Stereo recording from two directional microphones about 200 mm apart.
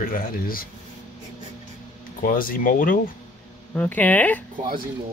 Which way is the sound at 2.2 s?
45° left (ahead or behind).